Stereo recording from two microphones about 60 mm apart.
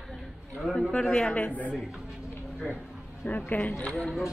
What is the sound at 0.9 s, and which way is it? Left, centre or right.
Speech, centre.